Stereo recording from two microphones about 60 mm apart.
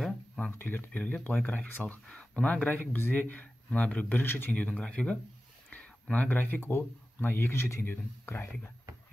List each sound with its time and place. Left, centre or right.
0.6 s speech: left
2.0 s speech: centre
2.4 s speech: left